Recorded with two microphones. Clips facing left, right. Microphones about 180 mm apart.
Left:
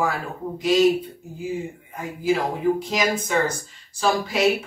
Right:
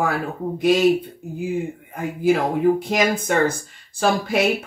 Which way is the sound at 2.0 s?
55° right (ahead or behind).